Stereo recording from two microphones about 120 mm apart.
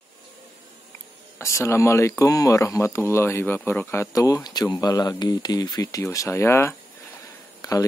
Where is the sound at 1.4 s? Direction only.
20° left (ahead or behind).